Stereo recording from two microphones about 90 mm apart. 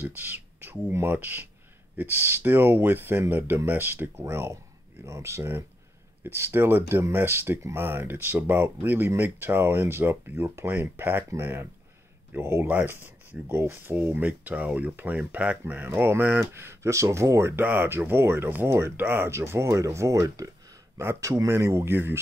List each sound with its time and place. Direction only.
0.0 s speech: 20° right (ahead or behind)